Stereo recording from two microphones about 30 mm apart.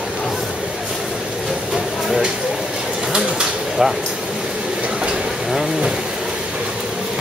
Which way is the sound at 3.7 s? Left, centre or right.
Centre.